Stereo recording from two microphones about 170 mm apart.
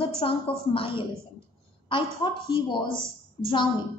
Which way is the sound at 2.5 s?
30° left (ahead or behind).